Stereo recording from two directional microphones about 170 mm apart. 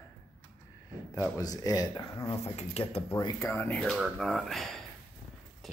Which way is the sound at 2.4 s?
40° left (ahead or behind).